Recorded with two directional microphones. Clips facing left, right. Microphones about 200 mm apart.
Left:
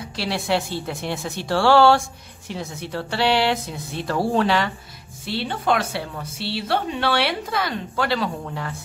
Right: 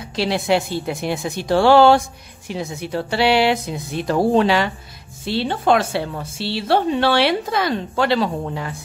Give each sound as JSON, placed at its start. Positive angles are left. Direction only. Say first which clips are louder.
{"t": 0.1, "sound": "speech", "louder": "right 5 dB", "side_deg": -20}
{"t": 5.2, "sound": "speech", "louder": "right 5 dB", "side_deg": -25}